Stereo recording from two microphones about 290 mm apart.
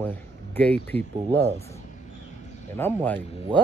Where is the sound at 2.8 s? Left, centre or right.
Centre.